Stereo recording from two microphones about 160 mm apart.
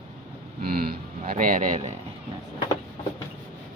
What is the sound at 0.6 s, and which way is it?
Speech, 70° right (ahead or behind).